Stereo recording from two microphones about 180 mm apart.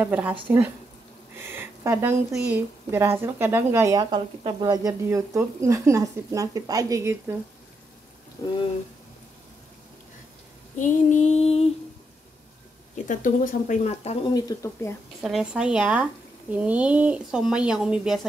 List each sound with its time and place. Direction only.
0.0 s speech: 10° right (ahead or behind)
1.3 s a sound: 10° right (ahead or behind)
2.5 s speech: 15° right (ahead or behind)
8.4 s speech: 30° left (ahead or behind)
10.8 s female singing: 45° left (ahead or behind)
12.9 s speech: 45° left (ahead or behind)
14.3 s speech: 15° left (ahead or behind)
15.2 s speech: 5° right (ahead or behind)